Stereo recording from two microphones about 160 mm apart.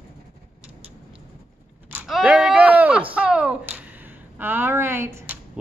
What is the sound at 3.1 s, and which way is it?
Speech, 5° right (ahead or behind).